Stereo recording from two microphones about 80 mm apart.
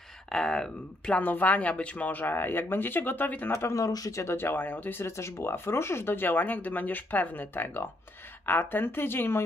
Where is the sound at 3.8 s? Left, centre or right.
Left.